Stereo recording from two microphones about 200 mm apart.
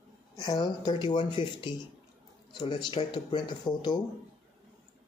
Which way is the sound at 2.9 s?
25° left (ahead or behind).